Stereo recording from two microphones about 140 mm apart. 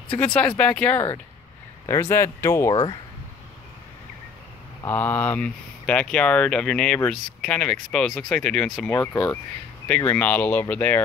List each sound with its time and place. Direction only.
0.2 s speech: 10° left (ahead or behind)
1.9 s speech: 20° left (ahead or behind)
2.7 s speech: 35° left (ahead or behind)
4.8 s speech: 15° left (ahead or behind)
8.9 s speech: 20° left (ahead or behind)